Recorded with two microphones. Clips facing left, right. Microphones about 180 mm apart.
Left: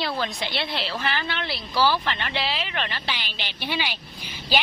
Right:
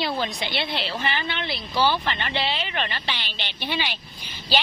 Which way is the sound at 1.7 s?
20° right (ahead or behind).